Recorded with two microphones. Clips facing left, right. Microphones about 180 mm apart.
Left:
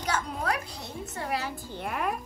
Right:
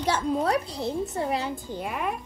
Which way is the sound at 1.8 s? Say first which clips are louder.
Even; centre (ahead or behind).